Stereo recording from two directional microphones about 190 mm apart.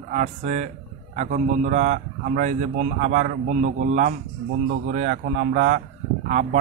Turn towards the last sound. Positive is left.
turn(degrees=-40)  # may be behind; listen again after turning